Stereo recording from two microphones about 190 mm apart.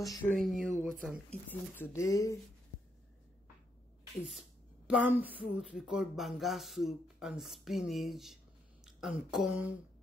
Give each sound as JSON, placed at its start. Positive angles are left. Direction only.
{"t": 0.0, "sound": "speech", "side_deg": 15}
{"t": 1.5, "sound": "speech", "side_deg": 10}
{"t": 4.8, "sound": "speech", "side_deg": -5}